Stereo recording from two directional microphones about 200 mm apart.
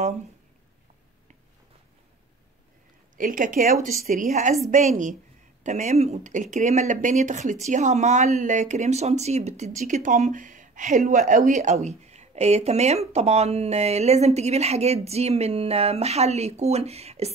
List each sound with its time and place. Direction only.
3.2 s speech: 40° right (ahead or behind)